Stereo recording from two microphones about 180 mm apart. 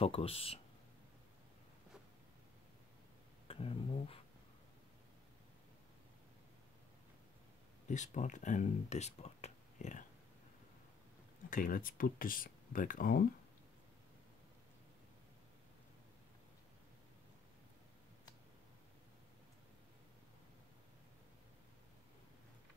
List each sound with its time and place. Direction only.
0.0 s speech: 35° left (ahead or behind)
3.4 s a sound: 30° left (ahead or behind)
7.9 s speech: 40° left (ahead or behind)
11.5 s speech: 50° left (ahead or behind)